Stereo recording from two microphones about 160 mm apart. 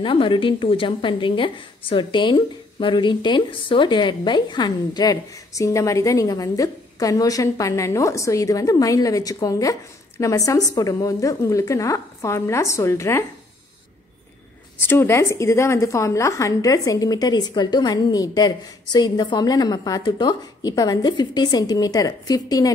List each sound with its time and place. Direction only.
0.0 s a woman's voice: 30° left (ahead or behind)
14.8 s a woman's voice: 15° left (ahead or behind)